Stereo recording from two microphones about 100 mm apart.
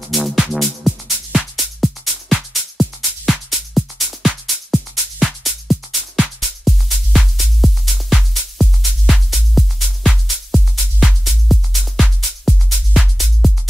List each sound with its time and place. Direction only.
0.1 s music: centre (ahead or behind)